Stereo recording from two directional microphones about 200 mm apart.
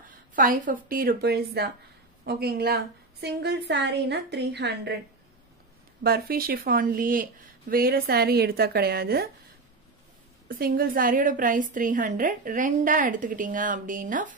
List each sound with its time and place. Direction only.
0.4 s a woman's voice: 45° right (ahead or behind)
6.0 s a woman's voice: 50° right (ahead or behind)
10.5 s a woman's voice: 45° right (ahead or behind)